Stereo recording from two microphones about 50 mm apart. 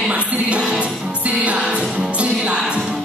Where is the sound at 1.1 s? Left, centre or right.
Right.